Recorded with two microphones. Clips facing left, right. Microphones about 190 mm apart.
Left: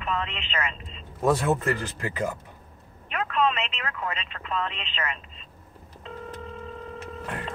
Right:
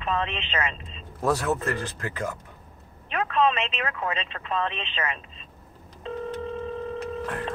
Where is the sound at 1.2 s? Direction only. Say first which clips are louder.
Left 2 dB; 10° left (ahead or behind).